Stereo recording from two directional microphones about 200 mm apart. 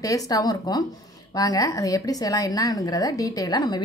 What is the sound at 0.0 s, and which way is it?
A woman's voice, 15° left (ahead or behind).